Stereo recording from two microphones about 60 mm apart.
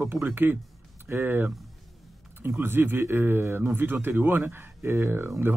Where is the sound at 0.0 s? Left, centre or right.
Right.